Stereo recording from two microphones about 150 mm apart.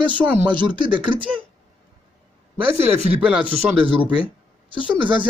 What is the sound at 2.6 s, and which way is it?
Speech, 40° right (ahead or behind).